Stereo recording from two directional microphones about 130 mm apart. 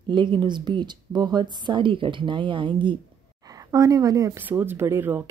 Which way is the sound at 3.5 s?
25° right (ahead or behind).